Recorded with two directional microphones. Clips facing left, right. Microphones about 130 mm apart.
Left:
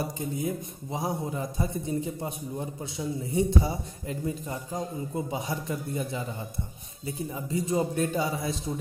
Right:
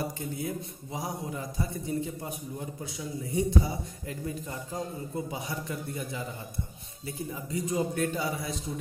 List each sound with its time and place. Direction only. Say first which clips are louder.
0.2 s a man's voice: left 3 dB; 20° left (ahead or behind)